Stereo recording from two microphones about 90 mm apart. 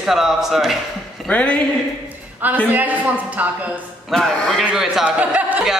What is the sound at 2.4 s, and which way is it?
A man's voice, 20° right (ahead or behind).